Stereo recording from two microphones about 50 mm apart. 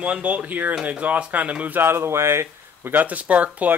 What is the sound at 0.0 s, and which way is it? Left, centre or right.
Speech, right.